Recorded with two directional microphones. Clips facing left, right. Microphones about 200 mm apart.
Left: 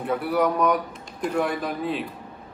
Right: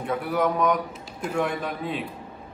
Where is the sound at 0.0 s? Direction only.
5° left (ahead or behind).